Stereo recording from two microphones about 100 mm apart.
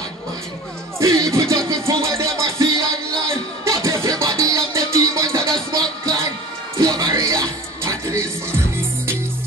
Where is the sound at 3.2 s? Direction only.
30° right (ahead or behind).